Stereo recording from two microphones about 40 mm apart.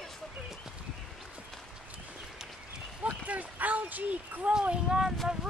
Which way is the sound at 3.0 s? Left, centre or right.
Right.